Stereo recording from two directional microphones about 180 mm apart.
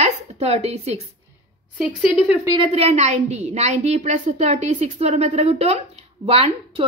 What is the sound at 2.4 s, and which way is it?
Speech, 20° right (ahead or behind).